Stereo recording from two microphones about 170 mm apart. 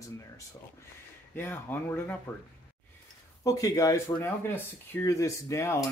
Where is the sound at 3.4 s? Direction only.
20° left (ahead or behind).